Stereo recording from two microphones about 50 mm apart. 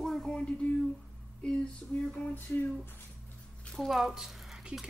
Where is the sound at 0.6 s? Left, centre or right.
Left.